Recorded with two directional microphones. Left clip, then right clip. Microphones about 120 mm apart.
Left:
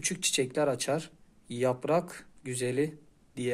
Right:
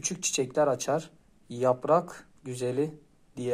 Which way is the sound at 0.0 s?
10° left (ahead or behind).